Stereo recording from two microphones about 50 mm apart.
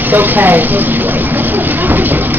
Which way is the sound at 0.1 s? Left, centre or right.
Right.